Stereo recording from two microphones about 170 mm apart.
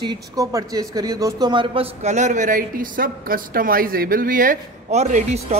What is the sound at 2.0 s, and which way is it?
Speech, 45° right (ahead or behind).